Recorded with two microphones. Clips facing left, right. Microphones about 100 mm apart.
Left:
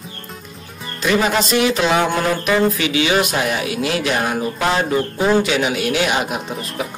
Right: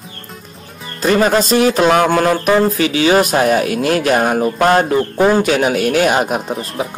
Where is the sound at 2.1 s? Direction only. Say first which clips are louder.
Right 5 dB; 45° right (ahead or behind).